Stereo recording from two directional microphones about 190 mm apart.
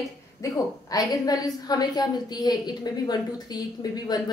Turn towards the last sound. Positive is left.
turn(degrees=20)  # may be behind; listen again after turning